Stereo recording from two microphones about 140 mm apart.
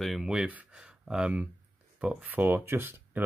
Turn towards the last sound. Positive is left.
turn(degrees=-15)  # may be behind; listen again after turning